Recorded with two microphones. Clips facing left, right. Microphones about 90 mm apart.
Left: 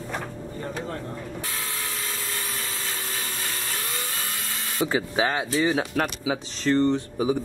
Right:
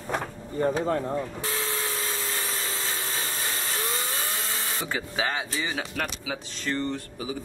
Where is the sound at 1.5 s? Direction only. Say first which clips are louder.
Right 3 dB; 20° right (ahead or behind).